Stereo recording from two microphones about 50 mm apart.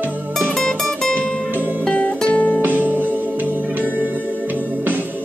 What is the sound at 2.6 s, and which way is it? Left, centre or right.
Music, right.